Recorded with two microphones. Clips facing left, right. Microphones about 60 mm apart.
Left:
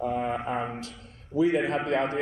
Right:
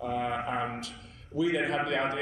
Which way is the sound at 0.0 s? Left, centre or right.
Left.